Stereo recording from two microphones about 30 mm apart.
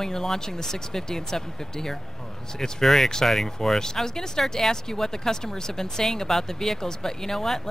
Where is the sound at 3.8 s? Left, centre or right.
Centre.